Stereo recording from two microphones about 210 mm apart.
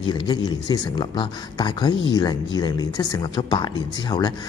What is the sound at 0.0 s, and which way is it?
A man's voice, 25° left (ahead or behind).